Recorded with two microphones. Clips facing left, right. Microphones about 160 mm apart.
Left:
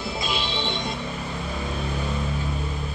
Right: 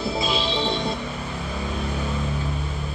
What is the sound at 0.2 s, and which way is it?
Music, 35° right (ahead or behind).